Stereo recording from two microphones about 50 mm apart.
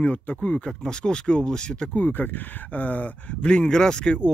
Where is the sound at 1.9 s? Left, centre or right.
Left; by 4.3 s centre.